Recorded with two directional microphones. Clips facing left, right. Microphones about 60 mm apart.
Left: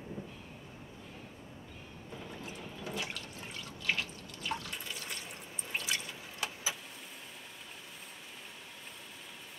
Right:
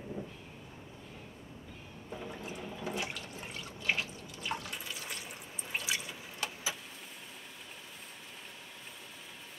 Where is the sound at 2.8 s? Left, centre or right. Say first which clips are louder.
Right 2 dB; right.